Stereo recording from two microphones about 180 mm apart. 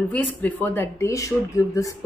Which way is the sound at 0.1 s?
10° left (ahead or behind).